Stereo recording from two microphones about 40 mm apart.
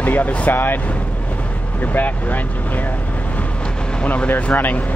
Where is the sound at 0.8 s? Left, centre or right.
Left.